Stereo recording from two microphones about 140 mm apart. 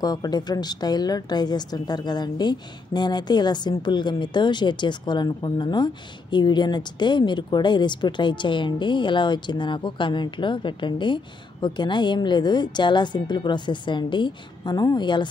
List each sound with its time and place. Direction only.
0.0 s speech: 30° left (ahead or behind)